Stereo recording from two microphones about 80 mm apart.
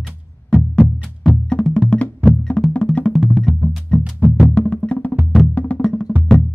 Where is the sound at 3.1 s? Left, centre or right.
Centre.